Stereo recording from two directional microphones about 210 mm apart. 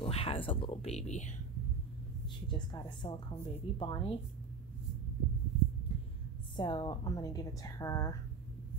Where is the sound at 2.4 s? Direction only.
20° left (ahead or behind).